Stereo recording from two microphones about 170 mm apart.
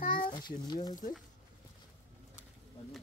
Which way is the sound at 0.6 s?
25° left (ahead or behind).